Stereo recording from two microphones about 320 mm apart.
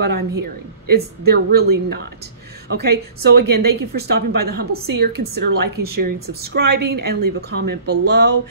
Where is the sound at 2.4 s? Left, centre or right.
Right.